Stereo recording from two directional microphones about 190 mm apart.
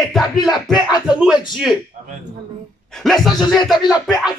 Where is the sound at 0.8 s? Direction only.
20° left (ahead or behind).